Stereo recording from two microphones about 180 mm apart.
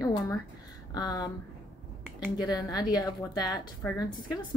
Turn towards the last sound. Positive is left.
turn(degrees=20)  # may be behind; listen again after turning